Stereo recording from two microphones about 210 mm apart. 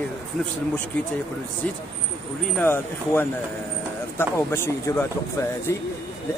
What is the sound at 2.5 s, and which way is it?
Speech, 10° left (ahead or behind).